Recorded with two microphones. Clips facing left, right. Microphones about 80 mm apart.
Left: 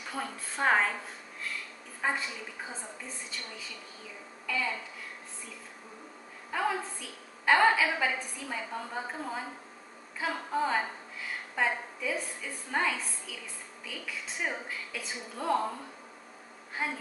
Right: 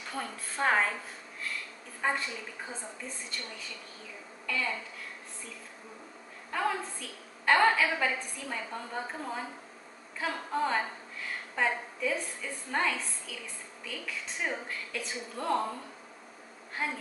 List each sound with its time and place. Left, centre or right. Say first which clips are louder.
0.1 s a woman's voice: left 1 dB; centre
2.0 s a woman's voice: right 1 dB; centre
4.5 s a woman's voice: left 1 dB; centre
6.5 s a woman's voice: even; centre
16.8 s a woman's voice: even; centre